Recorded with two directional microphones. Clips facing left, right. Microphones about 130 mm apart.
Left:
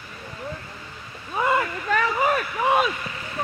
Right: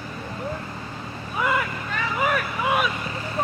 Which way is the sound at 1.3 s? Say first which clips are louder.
Left 2 dB; 30° left (ahead or behind).